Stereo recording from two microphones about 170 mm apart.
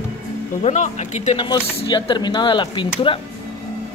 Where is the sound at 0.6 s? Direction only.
45° left (ahead or behind).